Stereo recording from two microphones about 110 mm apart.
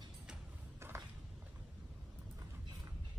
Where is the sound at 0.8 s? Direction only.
20° right (ahead or behind).